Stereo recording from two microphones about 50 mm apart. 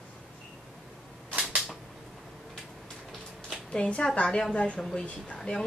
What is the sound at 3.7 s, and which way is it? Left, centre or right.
Speech, centre.